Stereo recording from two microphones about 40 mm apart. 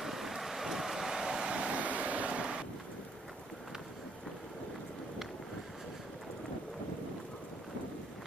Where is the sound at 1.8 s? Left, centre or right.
Right.